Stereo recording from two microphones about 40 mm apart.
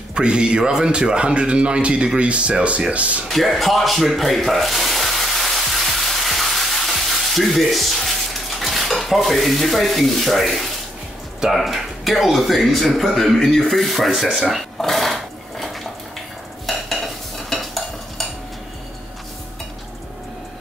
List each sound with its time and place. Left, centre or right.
0.1 s speech: right
3.3 s a sound: centre
11.5 s speech: centre
14.5 s dishes: centre
16.6 s stir: centre